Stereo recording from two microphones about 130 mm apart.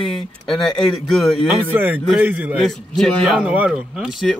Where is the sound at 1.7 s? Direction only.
15° right (ahead or behind).